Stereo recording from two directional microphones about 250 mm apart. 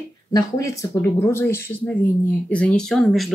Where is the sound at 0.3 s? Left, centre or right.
Centre.